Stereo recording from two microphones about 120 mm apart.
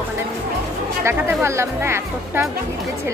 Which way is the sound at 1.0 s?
25° right (ahead or behind).